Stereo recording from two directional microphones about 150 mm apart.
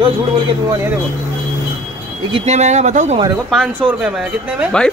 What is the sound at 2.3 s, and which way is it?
Speech, 45° right (ahead or behind).